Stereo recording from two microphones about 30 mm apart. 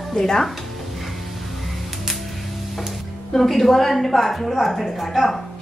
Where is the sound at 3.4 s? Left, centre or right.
Centre.